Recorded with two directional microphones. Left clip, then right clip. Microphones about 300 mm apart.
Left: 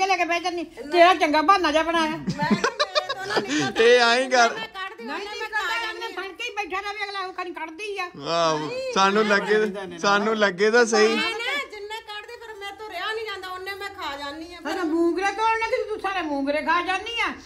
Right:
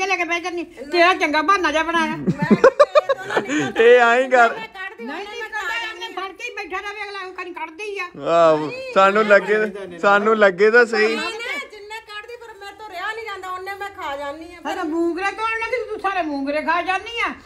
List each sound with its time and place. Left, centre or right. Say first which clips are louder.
0.0 s a woman's voice: right 1 dB; centre
2.3 s speech: right 6 dB; left
3.3 s a man's voice: right 3 dB; centre
6.5 s a sound: right 1 dB; centre
7.9 s a woman's voice: right 8 dB; centre
14.8 s a woman's voice: even; centre